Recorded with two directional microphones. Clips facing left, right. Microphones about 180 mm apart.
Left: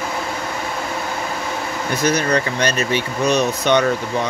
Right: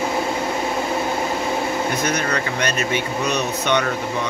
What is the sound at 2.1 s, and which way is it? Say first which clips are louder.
Speech: left 4 dB; 30° left (ahead or behind).